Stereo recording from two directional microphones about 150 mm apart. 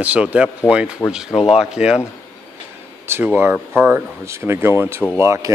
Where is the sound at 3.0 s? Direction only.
15° right (ahead or behind).